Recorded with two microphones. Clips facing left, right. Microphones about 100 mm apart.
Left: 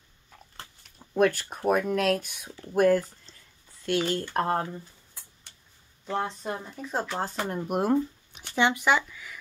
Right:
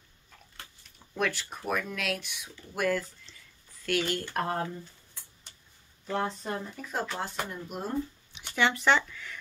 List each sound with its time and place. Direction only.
1.1 s speech: 45° left (ahead or behind)
3.8 s speech: 25° left (ahead or behind)
6.0 s speech: 20° left (ahead or behind)
7.2 s speech: 45° left (ahead or behind); by 8.0 s 70° left (ahead or behind)
8.5 s speech: 20° left (ahead or behind)
8.8 s speech: 5° left (ahead or behind)